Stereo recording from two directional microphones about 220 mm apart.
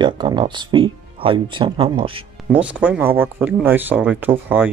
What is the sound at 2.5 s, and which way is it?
Speech, 5° right (ahead or behind).